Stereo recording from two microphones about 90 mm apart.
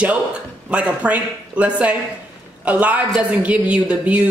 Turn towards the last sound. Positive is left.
turn(degrees=-15)  # may be behind; listen again after turning